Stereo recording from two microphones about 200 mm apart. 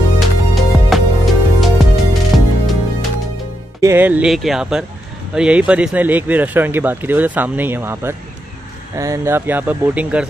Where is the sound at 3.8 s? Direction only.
10° right (ahead or behind).